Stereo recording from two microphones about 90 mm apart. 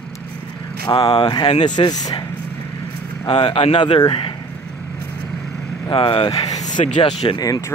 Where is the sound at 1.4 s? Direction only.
75° left (ahead or behind); by 2.3 s 50° left (ahead or behind).